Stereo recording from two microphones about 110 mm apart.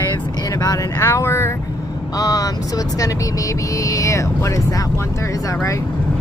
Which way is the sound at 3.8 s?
30° left (ahead or behind).